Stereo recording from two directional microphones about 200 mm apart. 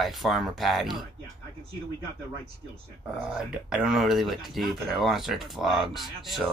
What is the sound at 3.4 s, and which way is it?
Speech, 5° right (ahead or behind).